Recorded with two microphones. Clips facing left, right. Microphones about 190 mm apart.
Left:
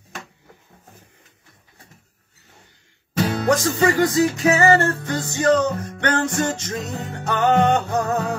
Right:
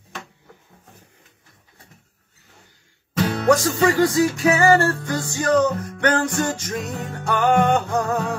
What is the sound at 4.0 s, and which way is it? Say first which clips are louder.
Music: even; 20° left (ahead or behind).